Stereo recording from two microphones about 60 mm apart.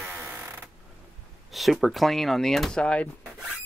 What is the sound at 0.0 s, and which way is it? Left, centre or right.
Creak, right.